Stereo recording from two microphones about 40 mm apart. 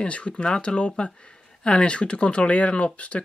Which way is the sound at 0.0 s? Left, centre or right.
Left.